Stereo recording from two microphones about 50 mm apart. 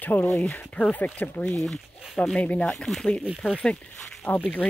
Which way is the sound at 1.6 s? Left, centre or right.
Centre.